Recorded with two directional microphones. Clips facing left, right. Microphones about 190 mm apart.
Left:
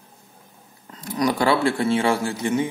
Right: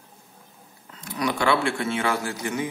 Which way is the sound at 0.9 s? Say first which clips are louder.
Left 5 dB; 35° left (ahead or behind).